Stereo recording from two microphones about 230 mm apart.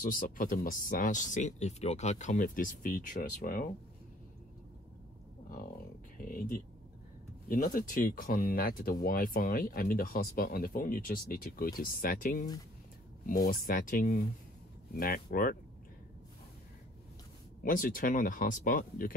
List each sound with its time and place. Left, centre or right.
0.0 s speech: left
6.2 s speech: left
13.5 s speech: left
17.6 s speech: left